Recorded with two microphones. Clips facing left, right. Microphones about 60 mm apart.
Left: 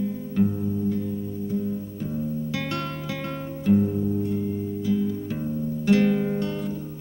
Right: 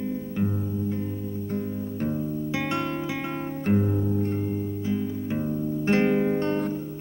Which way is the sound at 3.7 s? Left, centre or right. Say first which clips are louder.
Left 3 dB; right.